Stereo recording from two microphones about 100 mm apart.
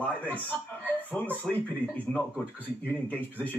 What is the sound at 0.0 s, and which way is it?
Speech, 15° left (ahead or behind).